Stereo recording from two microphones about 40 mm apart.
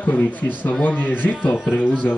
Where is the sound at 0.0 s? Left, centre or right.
Left.